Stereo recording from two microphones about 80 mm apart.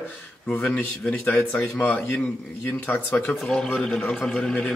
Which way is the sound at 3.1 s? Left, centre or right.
Centre.